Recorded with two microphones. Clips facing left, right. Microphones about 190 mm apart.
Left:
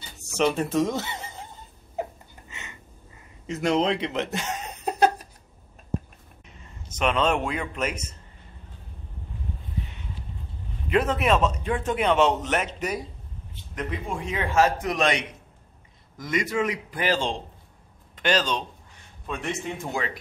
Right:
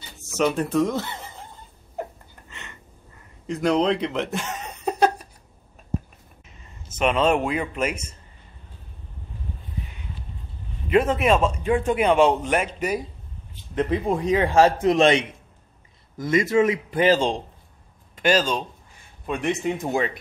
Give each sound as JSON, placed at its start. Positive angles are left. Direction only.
{"t": 0.6, "sound": "speech", "side_deg": 0}
{"t": 3.4, "sound": "speech", "side_deg": 5}
{"t": 7.0, "sound": "a man's voice", "side_deg": -5}
{"t": 10.9, "sound": "a man's voice", "side_deg": -5}
{"t": 13.7, "sound": "a man's voice", "side_deg": -35}
{"t": 18.1, "sound": "a man's voice", "side_deg": -5}